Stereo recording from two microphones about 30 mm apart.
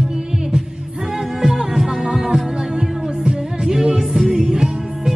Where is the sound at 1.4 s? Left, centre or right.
Centre.